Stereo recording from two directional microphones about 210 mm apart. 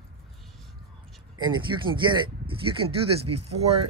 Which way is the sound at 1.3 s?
20° right (ahead or behind).